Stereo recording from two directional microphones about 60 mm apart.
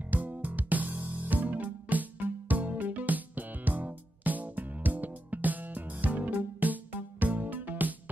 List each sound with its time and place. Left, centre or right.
0.1 s music: right